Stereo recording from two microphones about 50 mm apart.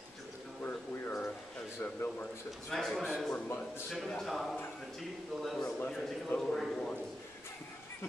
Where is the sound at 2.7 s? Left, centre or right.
Centre.